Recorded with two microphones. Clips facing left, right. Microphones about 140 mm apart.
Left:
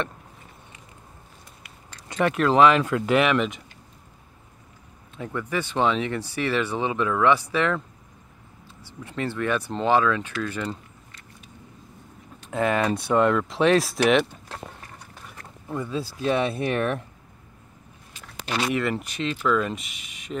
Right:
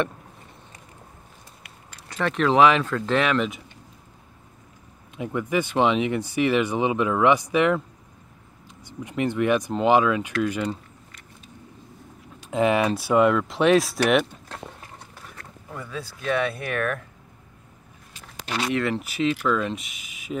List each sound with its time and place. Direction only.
2.0 s a sound: 15° left (ahead or behind)
2.3 s speech: centre (ahead or behind)
2.8 s speech: 10° left (ahead or behind)
5.1 s speech: 15° right (ahead or behind)
8.8 s speech: 15° right (ahead or behind)
12.4 s speech: 15° right (ahead or behind); by 14.6 s centre (ahead or behind)
15.3 s speech: 20° left (ahead or behind)
18.7 s speech: centre (ahead or behind)